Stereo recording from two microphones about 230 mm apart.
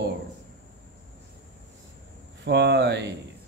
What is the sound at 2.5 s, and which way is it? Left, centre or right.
Speech, right.